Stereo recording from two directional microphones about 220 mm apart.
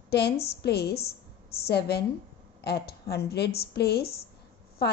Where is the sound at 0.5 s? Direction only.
45° left (ahead or behind).